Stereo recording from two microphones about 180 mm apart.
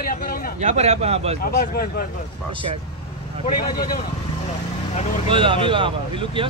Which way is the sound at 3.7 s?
50° left (ahead or behind).